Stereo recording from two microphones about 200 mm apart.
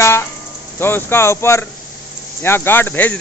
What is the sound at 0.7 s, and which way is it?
Speech, 10° left (ahead or behind).